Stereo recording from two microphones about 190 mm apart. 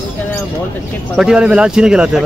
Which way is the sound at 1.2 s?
5° right (ahead or behind).